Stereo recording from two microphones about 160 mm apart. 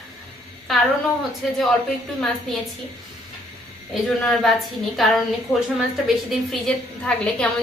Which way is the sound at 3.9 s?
Centre (ahead or behind).